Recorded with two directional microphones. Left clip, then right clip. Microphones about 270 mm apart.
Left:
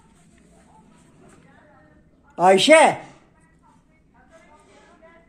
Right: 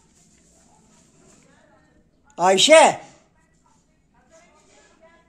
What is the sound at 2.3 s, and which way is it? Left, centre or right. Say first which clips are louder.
Speech: even; centre.